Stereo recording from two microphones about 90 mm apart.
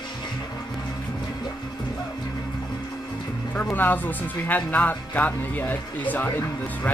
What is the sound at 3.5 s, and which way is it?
Speech, 20° left (ahead or behind).